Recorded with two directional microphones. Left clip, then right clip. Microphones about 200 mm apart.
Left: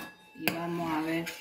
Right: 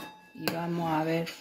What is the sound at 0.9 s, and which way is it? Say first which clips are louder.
Speech: right 4 dB; 50° right (ahead or behind).